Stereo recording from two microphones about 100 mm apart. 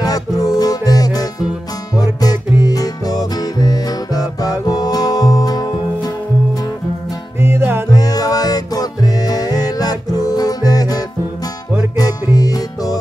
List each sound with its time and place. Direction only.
0.0 s music: 40° left (ahead or behind)
7.3 s music: 25° right (ahead or behind)
7.9 s music: 40° left (ahead or behind)
12.0 s music: 40° left (ahead or behind)